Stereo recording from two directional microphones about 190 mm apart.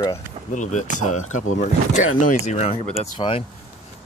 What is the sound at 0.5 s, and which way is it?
Speech, 40° left (ahead or behind).